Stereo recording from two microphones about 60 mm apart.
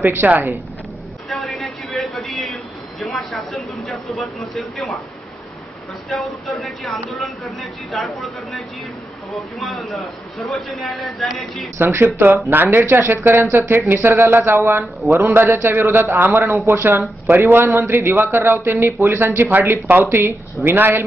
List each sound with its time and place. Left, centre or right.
0.0 s speech: right
1.3 s a man's voice: centre
6.0 s speech: centre
11.8 s speech: right